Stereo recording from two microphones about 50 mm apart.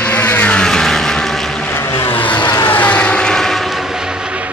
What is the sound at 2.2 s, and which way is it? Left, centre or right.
Vehicle, left.